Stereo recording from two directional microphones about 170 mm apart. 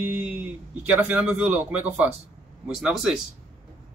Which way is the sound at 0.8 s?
10° right (ahead or behind).